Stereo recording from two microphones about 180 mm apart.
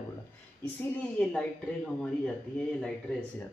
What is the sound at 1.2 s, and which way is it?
Speech, 10° left (ahead or behind).